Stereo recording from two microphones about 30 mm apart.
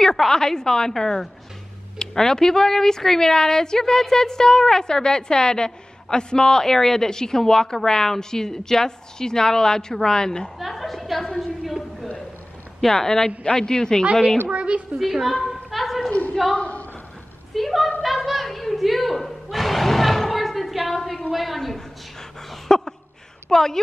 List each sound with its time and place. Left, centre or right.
0.3 s speech: left
10.7 s a woman's voice: centre
12.8 s speech: centre
14.5 s a woman's voice: right
15.0 s a sound: centre
16.1 s a sound: left
16.5 s a woman's voice: left
17.6 s a woman's voice: centre
19.1 s a sound: centre
21.3 s a woman's voice: centre
21.5 s speech: centre
22.7 s a sound: centre
23.5 s speech: centre